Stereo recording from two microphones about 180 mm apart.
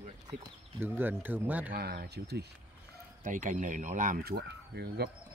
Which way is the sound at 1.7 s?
60° right (ahead or behind).